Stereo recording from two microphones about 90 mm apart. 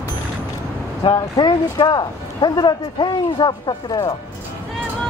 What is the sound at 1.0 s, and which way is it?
Speech, 50° left (ahead or behind).